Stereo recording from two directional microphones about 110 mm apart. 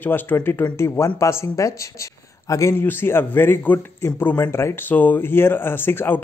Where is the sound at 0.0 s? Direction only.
15° left (ahead or behind).